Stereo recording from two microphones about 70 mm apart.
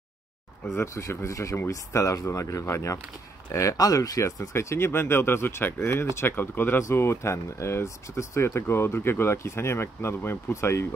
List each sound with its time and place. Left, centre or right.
0.7 s speech: left
4.4 s speech: left
6.8 s speech: left